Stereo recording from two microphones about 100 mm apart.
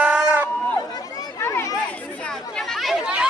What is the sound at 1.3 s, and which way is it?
Chatter, 30° left (ahead or behind).